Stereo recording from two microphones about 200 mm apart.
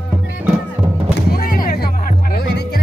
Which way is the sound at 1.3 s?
45° left (ahead or behind).